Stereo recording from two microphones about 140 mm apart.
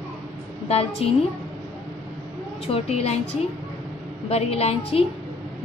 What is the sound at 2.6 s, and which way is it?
Speech, 45° left (ahead or behind).